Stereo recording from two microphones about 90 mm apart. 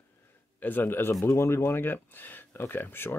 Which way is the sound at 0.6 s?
20° left (ahead or behind).